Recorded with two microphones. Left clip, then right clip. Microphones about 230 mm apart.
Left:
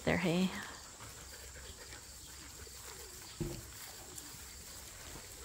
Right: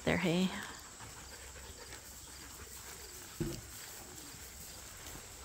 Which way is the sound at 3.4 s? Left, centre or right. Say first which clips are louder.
Right 3 dB; right.